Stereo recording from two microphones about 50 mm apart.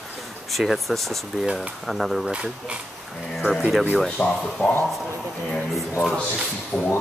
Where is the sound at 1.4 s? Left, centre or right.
Centre.